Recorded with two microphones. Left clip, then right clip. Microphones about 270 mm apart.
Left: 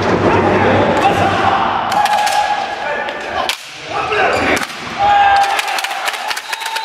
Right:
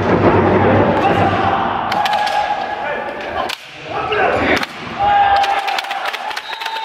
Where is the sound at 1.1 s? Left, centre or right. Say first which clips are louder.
Left 2 dB; centre.